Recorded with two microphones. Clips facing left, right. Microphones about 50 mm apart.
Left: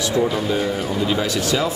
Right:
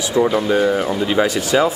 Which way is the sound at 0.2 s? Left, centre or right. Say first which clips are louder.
Right 7 dB; right.